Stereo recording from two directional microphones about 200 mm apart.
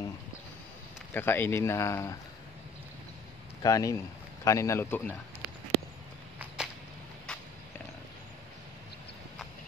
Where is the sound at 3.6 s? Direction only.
15° left (ahead or behind).